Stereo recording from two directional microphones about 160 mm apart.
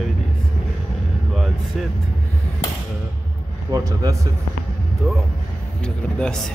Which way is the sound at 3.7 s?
20° right (ahead or behind).